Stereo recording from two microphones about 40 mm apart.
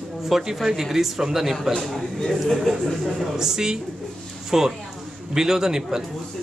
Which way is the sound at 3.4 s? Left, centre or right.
Centre.